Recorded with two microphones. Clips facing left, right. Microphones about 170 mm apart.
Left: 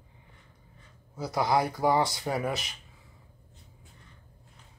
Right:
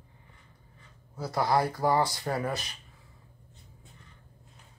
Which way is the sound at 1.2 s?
20° left (ahead or behind).